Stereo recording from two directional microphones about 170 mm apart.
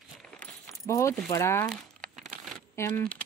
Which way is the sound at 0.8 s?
15° left (ahead or behind).